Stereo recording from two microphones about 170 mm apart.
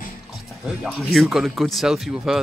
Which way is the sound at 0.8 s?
Centre (ahead or behind).